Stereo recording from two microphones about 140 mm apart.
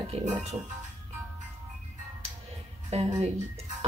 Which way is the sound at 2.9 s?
50° right (ahead or behind).